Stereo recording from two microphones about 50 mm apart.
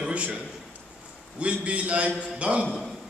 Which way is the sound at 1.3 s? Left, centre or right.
Right.